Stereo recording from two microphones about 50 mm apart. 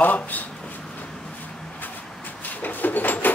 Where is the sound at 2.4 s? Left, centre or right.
Left.